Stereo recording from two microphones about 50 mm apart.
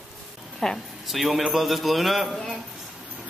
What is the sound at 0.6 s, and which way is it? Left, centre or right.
Speech, centre.